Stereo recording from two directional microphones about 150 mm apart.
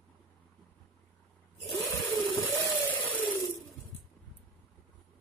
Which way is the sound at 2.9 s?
10° left (ahead or behind).